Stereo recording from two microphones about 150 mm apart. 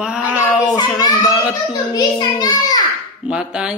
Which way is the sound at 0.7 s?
25° left (ahead or behind).